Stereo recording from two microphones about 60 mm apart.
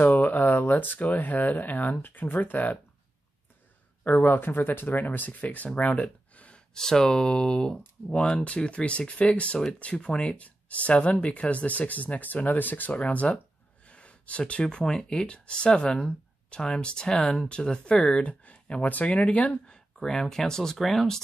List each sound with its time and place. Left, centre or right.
0.0 s speech: left
4.1 s speech: left
20.0 s speech: centre